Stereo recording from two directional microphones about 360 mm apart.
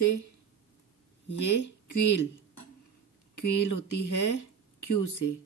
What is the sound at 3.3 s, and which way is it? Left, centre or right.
Speech, left.